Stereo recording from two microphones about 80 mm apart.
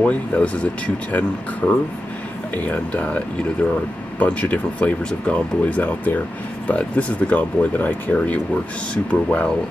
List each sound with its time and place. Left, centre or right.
0.0 s speech: centre
4.2 s speech: centre